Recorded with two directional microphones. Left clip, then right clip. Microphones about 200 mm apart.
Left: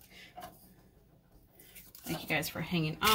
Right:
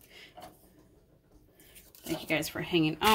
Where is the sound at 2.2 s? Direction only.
50° right (ahead or behind).